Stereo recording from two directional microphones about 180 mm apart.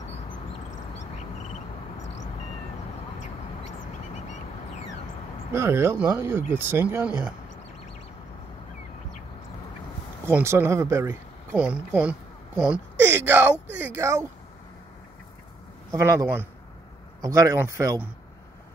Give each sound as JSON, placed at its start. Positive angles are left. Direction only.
{"t": 1.1, "sound": "cricket", "side_deg": 40}
{"t": 3.2, "sound": "duck", "side_deg": 40}
{"t": 5.5, "sound": "speech", "side_deg": -15}
{"t": 10.2, "sound": "speech", "side_deg": -15}
{"t": 11.5, "sound": "speech", "side_deg": -5}
{"t": 15.9, "sound": "speech", "side_deg": -15}